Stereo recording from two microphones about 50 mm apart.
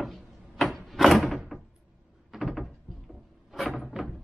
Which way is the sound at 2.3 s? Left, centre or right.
Centre.